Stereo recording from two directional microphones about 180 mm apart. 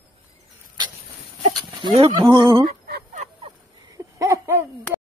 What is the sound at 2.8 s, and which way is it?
Fowl, 55° right (ahead or behind).